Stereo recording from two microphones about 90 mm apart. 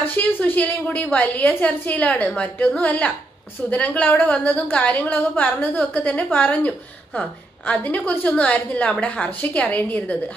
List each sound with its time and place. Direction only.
0.0 s a woman's voice: 15° left (ahead or behind)